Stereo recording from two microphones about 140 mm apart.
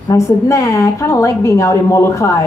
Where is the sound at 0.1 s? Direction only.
20° left (ahead or behind).